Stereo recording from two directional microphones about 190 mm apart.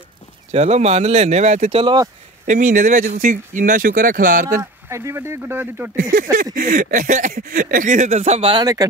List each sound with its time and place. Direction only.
0.5 s speech: 35° right (ahead or behind)
2.4 s speech: 40° right (ahead or behind)
4.6 s speech: 15° right (ahead or behind)
6.3 s speech: 45° right (ahead or behind); by 8.8 s 20° right (ahead or behind)